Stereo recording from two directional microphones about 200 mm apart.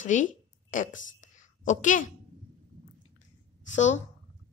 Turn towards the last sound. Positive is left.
turn(degrees=35)  # may be behind; listen again after turning